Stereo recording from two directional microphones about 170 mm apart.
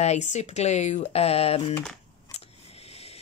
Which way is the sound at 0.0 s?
40° left (ahead or behind).